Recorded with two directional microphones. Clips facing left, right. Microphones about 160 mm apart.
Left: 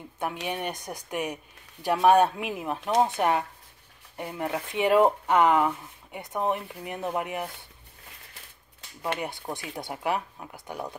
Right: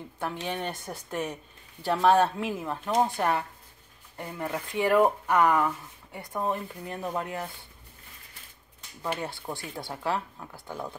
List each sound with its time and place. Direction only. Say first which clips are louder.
0.2 s a woman's voice: left 1 dB; 15° left (ahead or behind)
9.2 s a woman's voice: left 1 dB; 20° left (ahead or behind)